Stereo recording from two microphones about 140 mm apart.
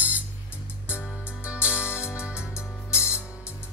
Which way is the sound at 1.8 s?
20° left (ahead or behind).